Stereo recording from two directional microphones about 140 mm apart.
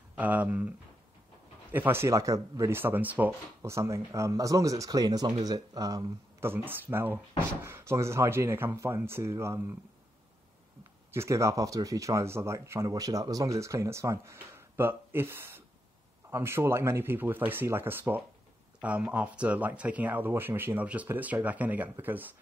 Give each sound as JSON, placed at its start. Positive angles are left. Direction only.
{"t": 0.2, "sound": "speech", "side_deg": -10}
{"t": 11.1, "sound": "speech", "side_deg": -20}